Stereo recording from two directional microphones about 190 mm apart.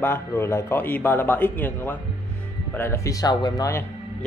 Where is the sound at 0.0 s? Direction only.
10° left (ahead or behind).